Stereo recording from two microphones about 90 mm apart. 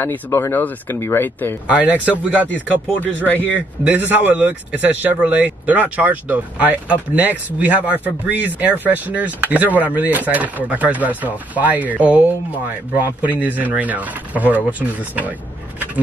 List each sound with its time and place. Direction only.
0.0 s speech: 25° left (ahead or behind)
1.7 s speech: 15° right (ahead or behind)
3.0 s speech: 20° left (ahead or behind)
3.8 s speech: 15° right (ahead or behind)